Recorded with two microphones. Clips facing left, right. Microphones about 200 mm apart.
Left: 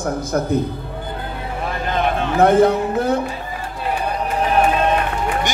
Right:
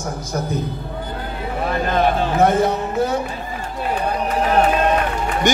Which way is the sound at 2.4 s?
55° left (ahead or behind).